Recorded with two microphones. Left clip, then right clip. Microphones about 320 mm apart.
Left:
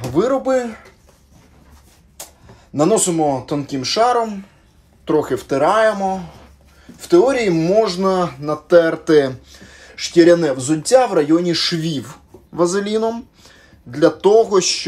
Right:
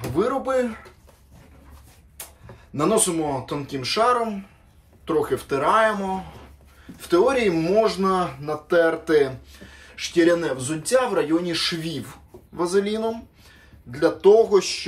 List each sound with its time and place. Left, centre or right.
0.1 s speech: centre
2.7 s speech: centre